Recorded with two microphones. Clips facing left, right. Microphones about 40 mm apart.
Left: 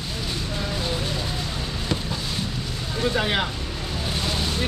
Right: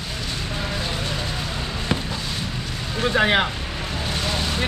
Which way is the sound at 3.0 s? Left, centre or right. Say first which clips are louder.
Right 5 dB; right.